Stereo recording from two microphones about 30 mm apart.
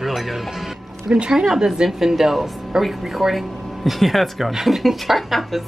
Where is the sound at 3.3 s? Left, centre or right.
Centre.